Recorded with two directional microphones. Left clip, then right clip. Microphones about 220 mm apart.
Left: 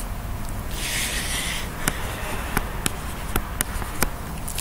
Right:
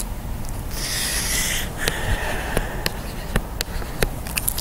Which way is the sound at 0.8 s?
10° right (ahead or behind).